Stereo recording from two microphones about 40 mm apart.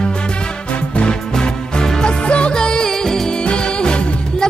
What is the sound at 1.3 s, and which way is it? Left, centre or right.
Music, centre.